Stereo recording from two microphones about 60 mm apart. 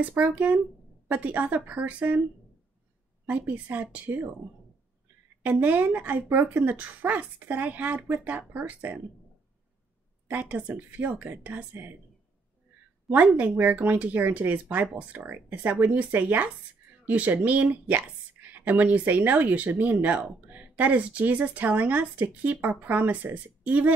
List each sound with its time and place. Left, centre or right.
0.1 s a woman's voice: right
3.3 s a woman's voice: right
5.4 s a woman's voice: right
10.3 s a woman's voice: right
13.1 s a woman's voice: right